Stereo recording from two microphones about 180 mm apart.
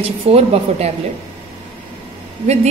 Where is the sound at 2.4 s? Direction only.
35° right (ahead or behind).